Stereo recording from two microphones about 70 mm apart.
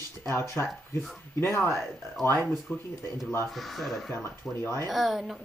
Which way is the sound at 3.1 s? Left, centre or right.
Left.